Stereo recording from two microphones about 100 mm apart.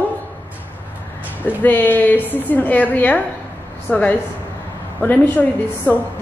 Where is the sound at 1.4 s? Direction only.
20° left (ahead or behind).